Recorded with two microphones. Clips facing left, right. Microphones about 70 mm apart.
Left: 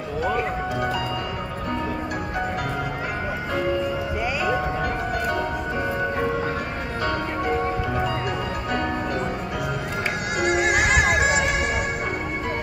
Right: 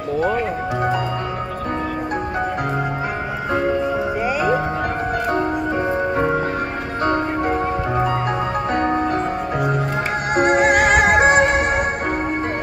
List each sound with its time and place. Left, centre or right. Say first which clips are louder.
7.1 s music: right 5 dB; right
10.3 s music: right 7 dB; right